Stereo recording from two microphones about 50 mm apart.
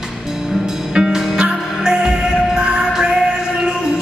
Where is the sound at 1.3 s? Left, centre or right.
Centre.